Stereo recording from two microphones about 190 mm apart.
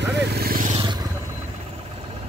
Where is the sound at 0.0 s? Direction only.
60° right (ahead or behind).